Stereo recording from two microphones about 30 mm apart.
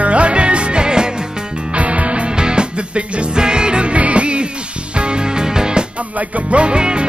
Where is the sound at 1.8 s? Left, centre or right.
Right.